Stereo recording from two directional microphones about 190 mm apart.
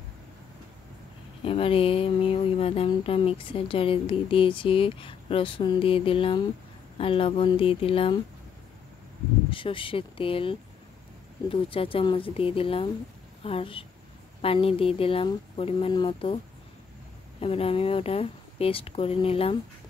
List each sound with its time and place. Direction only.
1.4 s speech: 30° left (ahead or behind)
9.5 s speech: 25° left (ahead or behind)
17.4 s speech: 30° left (ahead or behind)